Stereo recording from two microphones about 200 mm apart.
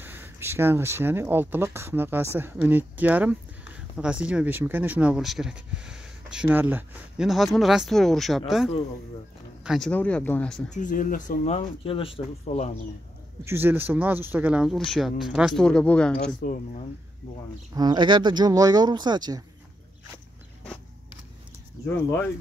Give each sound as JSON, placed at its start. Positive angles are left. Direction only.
{"t": 0.0, "sound": "speech", "side_deg": -10}
{"t": 10.7, "sound": "speech", "side_deg": 40}
{"t": 13.5, "sound": "speech", "side_deg": -10}
{"t": 16.3, "sound": "speech", "side_deg": 40}
{"t": 17.7, "sound": "speech", "side_deg": -20}